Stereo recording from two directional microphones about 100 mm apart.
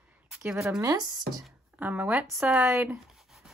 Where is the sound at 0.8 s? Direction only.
35° right (ahead or behind).